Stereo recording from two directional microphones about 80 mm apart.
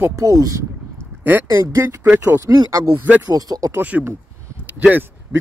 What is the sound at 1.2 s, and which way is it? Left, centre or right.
Speech, right.